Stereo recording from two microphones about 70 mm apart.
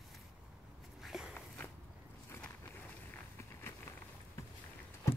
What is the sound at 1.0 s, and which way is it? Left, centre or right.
Walk, centre.